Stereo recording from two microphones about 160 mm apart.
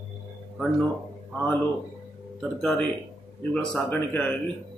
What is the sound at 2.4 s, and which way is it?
A man's voice, 5° left (ahead or behind).